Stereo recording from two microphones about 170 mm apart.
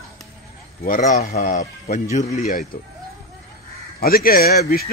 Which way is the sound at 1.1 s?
45° left (ahead or behind).